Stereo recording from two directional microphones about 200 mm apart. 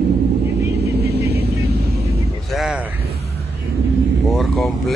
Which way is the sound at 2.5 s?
Centre (ahead or behind).